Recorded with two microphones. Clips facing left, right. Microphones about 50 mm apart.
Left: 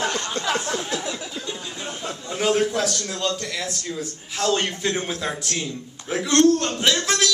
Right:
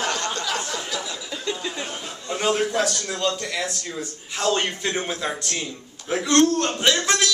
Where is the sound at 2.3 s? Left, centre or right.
Centre.